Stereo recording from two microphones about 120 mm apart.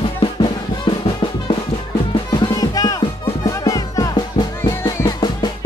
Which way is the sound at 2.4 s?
30° left (ahead or behind).